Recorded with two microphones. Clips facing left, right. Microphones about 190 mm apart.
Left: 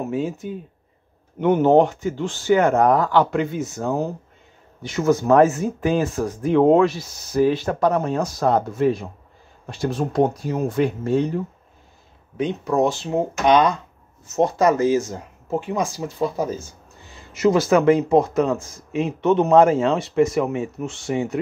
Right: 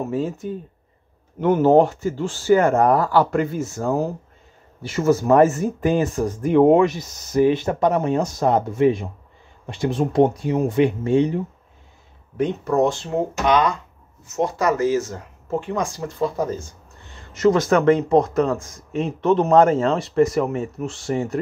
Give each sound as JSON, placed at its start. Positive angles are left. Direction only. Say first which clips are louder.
{"t": 0.0, "sound": "speech", "louder": "right 1 dB", "side_deg": 0}
{"t": 5.8, "sound": "speech", "louder": "right 1 dB", "side_deg": -15}
{"t": 12.4, "sound": "speech", "louder": "right 1 dB", "side_deg": -5}
{"t": 13.5, "sound": "speech", "louder": "left 3 dB", "side_deg": 20}